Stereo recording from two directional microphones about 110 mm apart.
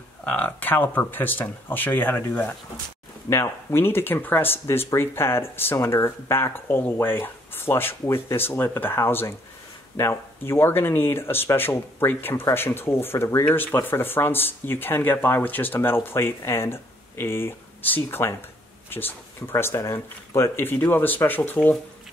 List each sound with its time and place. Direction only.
0.2 s speech: 15° left (ahead or behind)